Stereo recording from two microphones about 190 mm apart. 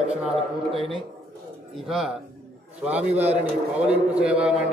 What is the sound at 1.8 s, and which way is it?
Speech, centre (ahead or behind).